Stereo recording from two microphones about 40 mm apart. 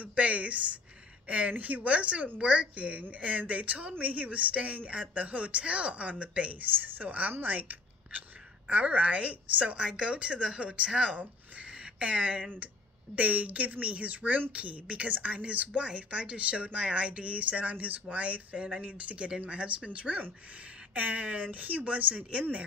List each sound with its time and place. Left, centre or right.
0.0 s a woman's voice: right
8.6 s speech: right